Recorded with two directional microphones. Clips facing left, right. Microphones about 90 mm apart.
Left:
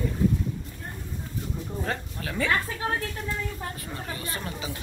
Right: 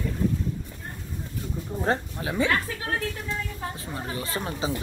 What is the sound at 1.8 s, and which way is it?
Speech, 25° right (ahead or behind).